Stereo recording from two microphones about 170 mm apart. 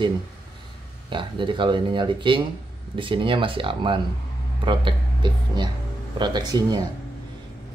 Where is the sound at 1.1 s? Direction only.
30° right (ahead or behind).